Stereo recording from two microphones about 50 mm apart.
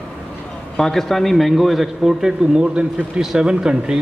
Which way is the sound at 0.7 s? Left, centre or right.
Centre.